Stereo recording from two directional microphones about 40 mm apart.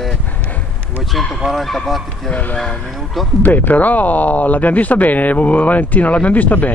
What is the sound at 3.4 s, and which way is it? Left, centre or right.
Speech, left.